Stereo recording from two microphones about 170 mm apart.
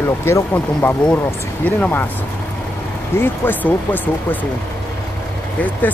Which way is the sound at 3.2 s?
10° left (ahead or behind).